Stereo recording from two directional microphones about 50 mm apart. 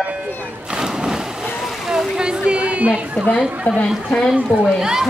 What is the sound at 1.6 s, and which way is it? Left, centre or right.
Vehicle, centre.